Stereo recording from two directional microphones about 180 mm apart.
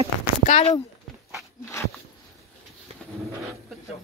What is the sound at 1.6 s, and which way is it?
Dog, 15° left (ahead or behind).